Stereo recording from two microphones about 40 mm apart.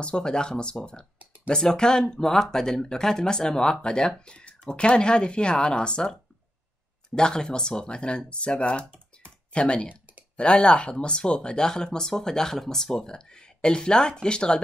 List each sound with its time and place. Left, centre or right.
0.0 s speech: left
7.2 s speech: centre